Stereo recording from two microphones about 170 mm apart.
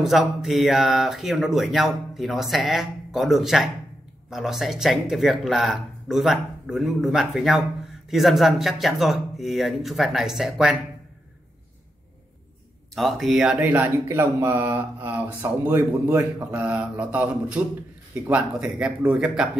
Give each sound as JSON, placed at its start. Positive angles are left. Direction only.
{"t": 0.0, "sound": "speech", "side_deg": 0}
{"t": 12.9, "sound": "speech", "side_deg": 0}